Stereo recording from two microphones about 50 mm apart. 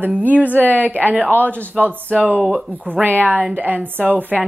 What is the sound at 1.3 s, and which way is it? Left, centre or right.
Speech, left.